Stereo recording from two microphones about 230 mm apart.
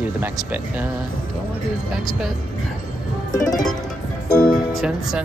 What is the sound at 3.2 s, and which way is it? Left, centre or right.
Music, left.